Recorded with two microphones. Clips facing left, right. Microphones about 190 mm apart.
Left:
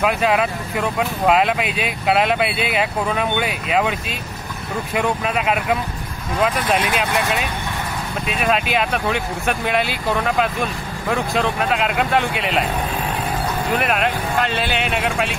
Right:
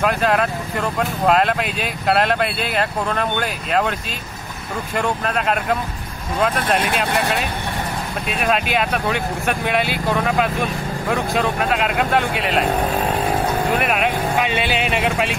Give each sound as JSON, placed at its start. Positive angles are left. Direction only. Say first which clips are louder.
{"t": 0.0, "sound": "speech", "louder": "even", "side_deg": 5}
{"t": 4.9, "sound": "speech", "louder": "left 1 dB", "side_deg": 5}
{"t": 13.7, "sound": "speech", "louder": "right 1 dB", "side_deg": -5}